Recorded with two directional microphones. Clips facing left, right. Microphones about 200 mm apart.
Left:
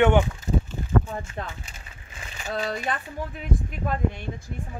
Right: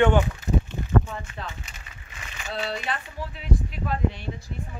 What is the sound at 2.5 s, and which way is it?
Speech, 45° left (ahead or behind).